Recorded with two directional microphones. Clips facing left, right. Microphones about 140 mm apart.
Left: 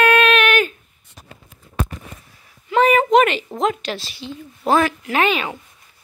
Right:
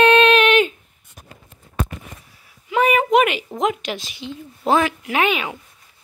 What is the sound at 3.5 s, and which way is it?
A woman's voice, 15° right (ahead or behind).